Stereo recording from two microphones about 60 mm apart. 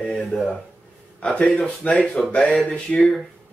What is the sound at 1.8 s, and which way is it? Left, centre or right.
A man's voice, left.